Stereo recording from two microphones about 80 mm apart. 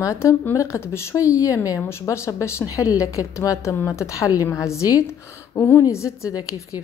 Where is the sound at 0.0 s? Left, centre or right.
Left.